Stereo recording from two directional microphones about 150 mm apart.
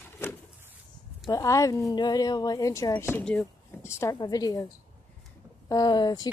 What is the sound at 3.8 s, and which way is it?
Speech, 20° left (ahead or behind).